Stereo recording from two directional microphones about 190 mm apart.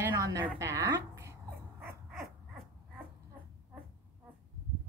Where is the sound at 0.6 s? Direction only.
15° right (ahead or behind).